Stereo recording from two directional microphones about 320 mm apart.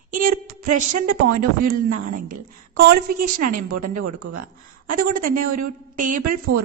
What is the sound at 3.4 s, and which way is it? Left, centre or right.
Speech, right.